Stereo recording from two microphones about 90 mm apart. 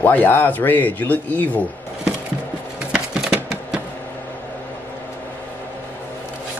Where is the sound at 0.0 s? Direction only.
20° left (ahead or behind).